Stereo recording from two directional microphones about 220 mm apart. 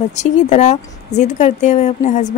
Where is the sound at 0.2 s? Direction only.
30° left (ahead or behind).